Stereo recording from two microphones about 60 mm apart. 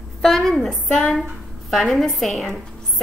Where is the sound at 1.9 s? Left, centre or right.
Centre.